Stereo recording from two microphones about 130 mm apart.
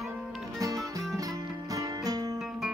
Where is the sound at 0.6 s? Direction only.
25° right (ahead or behind).